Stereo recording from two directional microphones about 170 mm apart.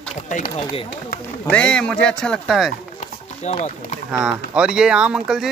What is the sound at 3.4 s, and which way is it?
Speech, 40° left (ahead or behind).